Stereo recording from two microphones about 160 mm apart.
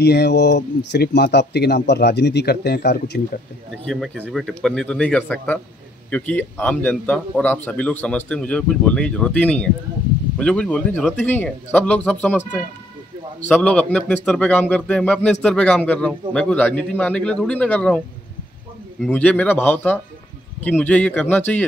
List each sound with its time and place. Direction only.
0.0 s speech: 90° left
3.8 s a man's voice: 5° left (ahead or behind)
13.5 s a man's voice: 10° left (ahead or behind)
19.1 s a man's voice: 10° left (ahead or behind)